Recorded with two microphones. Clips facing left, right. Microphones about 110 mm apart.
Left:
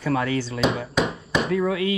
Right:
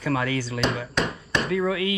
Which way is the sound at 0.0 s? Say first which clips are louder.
Left 2 dB; 25° left (ahead or behind).